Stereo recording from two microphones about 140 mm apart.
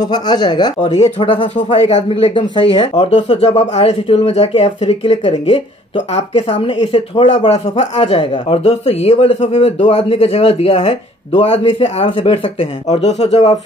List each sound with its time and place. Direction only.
0.1 s speech: 30° left (ahead or behind)
12.8 s speech: 55° left (ahead or behind)